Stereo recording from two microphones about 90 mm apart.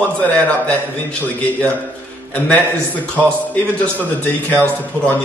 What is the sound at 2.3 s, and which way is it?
Speech, 15° left (ahead or behind).